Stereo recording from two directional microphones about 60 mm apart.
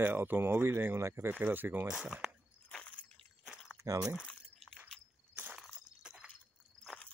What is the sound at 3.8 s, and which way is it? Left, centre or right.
Speech, right.